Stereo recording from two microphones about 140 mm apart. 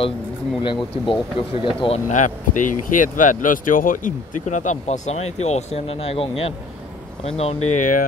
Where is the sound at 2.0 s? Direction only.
65° left (ahead or behind).